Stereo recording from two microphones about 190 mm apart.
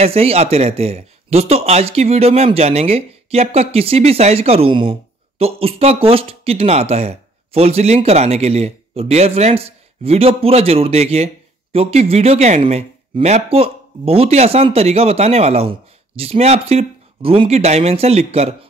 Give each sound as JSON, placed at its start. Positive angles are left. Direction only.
{"t": 0.0, "sound": "speech", "side_deg": -30}